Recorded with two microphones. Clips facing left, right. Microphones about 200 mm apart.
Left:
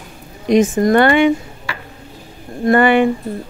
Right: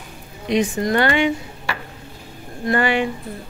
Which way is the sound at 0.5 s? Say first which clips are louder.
Left 7 dB; 50° left (ahead or behind).